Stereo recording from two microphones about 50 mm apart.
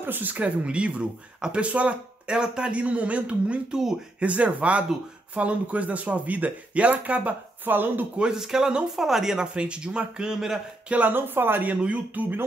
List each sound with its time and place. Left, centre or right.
0.0 s speech: right
0.7 s speech: right
2.2 s speech: centre
7.6 s speech: right
8.2 s speech: centre
9.5 s speech: centre
10.9 s speech: right